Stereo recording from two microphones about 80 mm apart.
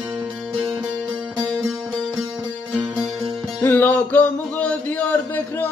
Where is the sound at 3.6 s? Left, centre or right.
Left.